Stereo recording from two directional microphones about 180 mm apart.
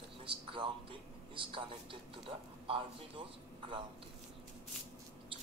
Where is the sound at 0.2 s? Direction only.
30° right (ahead or behind).